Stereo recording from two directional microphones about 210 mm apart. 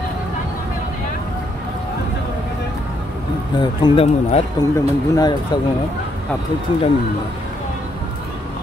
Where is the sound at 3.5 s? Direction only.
25° left (ahead or behind).